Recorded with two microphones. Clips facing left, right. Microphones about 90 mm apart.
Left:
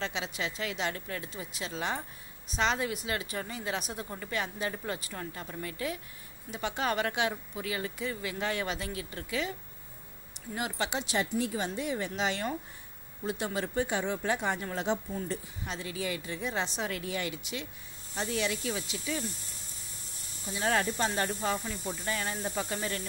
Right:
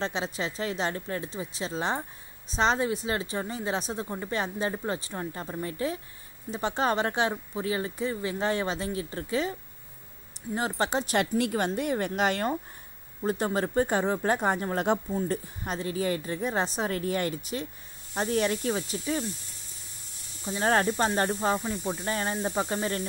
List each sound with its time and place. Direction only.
0.0 s a woman's voice: 35° right (ahead or behind)
11.1 s a woman's voice: 65° right (ahead or behind); by 19.3 s 40° right (ahead or behind)
20.4 s a woman's voice: 40° right (ahead or behind)